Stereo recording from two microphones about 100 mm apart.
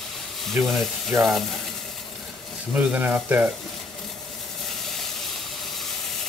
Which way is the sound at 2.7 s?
20° right (ahead or behind).